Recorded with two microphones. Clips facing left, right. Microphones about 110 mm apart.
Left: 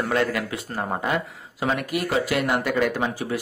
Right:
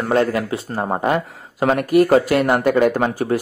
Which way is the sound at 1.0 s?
45° right (ahead or behind).